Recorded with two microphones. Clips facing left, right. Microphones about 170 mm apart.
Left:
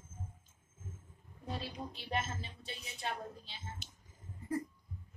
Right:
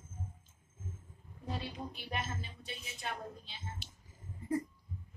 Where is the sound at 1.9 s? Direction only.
30° left (ahead or behind).